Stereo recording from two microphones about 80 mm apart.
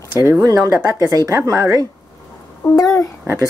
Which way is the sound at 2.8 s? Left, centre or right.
Left.